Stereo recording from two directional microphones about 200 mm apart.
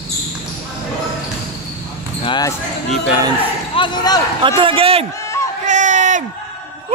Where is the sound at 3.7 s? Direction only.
20° left (ahead or behind).